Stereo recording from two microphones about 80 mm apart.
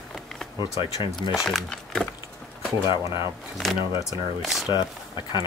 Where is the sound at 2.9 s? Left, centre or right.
Left.